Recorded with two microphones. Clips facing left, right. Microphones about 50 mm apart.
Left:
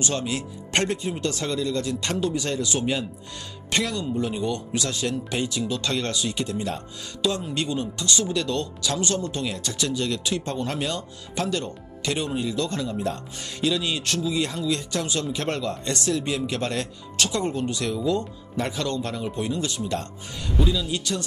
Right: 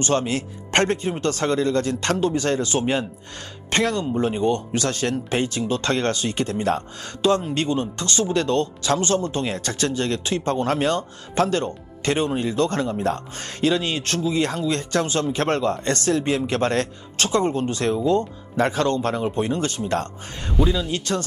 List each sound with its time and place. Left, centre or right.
0.0 s speech: right
20.5 s speech: right